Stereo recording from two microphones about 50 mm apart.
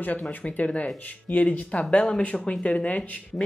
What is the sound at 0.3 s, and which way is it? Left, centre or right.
Speech, left.